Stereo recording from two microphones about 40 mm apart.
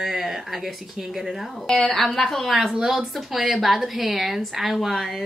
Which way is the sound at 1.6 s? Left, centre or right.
Centre.